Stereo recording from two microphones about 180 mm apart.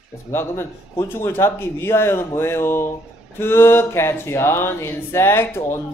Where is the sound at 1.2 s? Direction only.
15° left (ahead or behind).